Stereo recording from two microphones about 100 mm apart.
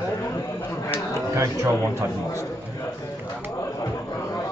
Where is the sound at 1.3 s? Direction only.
30° right (ahead or behind).